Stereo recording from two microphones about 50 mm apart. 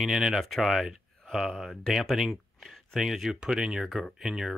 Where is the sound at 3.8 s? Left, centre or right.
Centre.